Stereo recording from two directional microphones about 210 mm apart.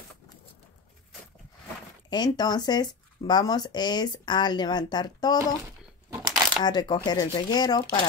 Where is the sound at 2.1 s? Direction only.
20° left (ahead or behind).